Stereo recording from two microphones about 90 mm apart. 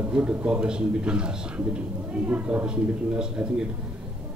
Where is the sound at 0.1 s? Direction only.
15° right (ahead or behind).